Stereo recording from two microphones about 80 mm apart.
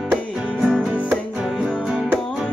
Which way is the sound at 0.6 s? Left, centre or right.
Centre.